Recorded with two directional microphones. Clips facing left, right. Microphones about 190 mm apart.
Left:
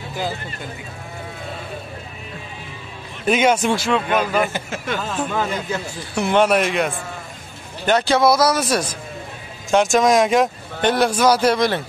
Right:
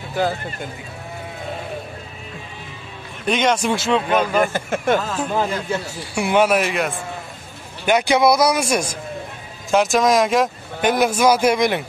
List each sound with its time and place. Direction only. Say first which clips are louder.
3.3 s speech: left 2 dB; 5° left (ahead or behind)
4.6 s speech: right 6 dB; 50° right (ahead or behind)
5.3 s a man's voice: right 4 dB; 35° right (ahead or behind)
6.1 s speech: even; 10° right (ahead or behind)
7.8 s speech: even; 15° right (ahead or behind)
9.7 s speech: left 1 dB; centre (ahead or behind)